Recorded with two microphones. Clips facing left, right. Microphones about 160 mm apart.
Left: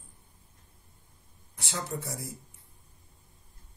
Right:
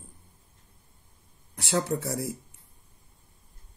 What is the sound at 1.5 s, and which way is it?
Speech, 75° right (ahead or behind).